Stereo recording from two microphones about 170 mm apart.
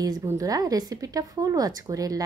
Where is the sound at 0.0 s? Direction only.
20° right (ahead or behind).